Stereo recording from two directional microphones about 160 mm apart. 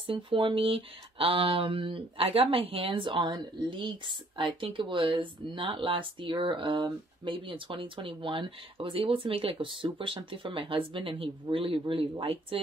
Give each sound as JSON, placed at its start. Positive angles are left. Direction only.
{"t": 0.0, "sound": "speech", "side_deg": -35}